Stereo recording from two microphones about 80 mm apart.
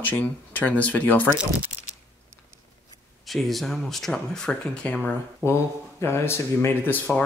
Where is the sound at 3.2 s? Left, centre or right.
Centre.